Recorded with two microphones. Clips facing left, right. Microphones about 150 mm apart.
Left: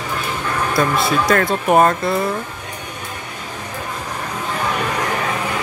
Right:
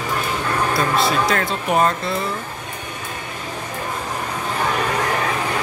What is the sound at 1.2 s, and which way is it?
Speech, 50° left (ahead or behind).